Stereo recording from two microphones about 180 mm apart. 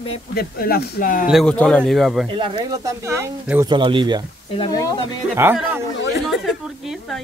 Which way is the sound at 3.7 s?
25° right (ahead or behind).